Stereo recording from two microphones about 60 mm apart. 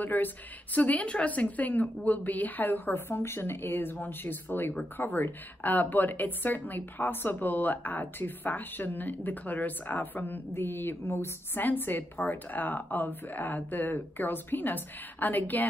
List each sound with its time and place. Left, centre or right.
0.0 s a woman's voice: left